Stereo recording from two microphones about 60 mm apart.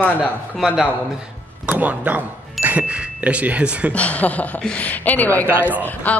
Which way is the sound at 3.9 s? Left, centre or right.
Left.